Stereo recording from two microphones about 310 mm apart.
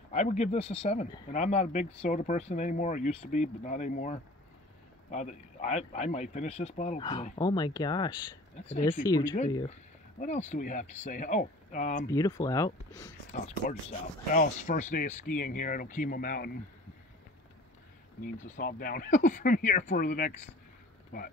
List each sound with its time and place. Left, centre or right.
0.1 s speech: left
12.1 s speech: centre
13.3 s speech: left
18.6 s speech: left